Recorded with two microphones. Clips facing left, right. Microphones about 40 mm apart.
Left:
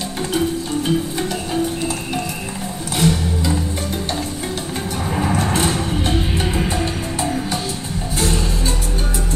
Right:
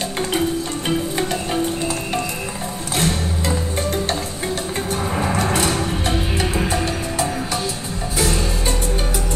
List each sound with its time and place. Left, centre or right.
3.0 s music: right
5.1 s music: centre